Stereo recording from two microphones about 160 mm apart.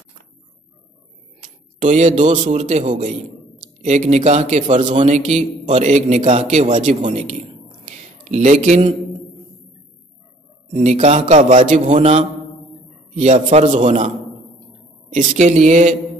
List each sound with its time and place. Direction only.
1.4 s a man's voice: 50° right (ahead or behind)
7.8 s a sound: 45° right (ahead or behind)
10.7 s speech: 50° right (ahead or behind)
15.1 s speech: 45° right (ahead or behind)